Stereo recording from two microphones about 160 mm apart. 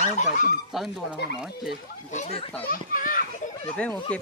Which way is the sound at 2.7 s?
60° left (ahead or behind).